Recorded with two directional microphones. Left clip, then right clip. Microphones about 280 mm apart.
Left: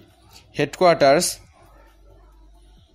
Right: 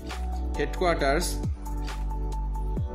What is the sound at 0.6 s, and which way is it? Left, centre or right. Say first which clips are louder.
Speech: left 10 dB; left.